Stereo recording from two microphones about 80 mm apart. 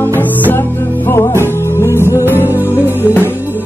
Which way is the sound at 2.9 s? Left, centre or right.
Left.